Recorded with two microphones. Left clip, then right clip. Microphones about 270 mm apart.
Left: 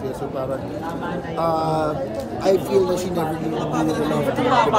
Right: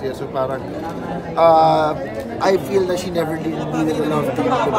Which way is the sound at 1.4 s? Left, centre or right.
Centre.